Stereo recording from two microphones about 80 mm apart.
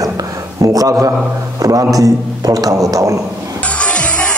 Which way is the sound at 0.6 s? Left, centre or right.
Right.